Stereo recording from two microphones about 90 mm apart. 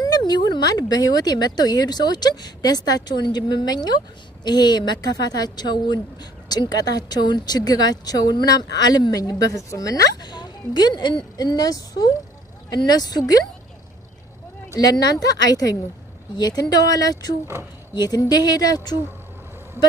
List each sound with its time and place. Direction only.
0.0 s speech: 50° left (ahead or behind)
14.8 s speech: 45° left (ahead or behind)